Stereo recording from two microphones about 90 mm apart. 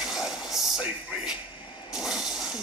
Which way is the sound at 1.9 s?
5° right (ahead or behind).